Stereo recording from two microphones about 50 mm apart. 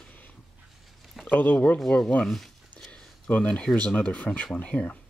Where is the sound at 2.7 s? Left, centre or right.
Centre.